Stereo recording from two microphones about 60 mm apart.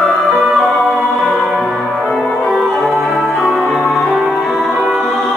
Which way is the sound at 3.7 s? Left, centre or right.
Centre.